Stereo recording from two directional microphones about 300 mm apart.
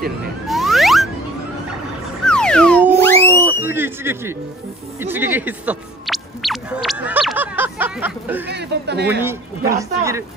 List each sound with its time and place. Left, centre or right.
0.5 s music: centre
2.2 s a sound: centre
3.3 s speech: centre
5.0 s a sound: centre
8.5 s a man's voice: right
9.2 s speech: centre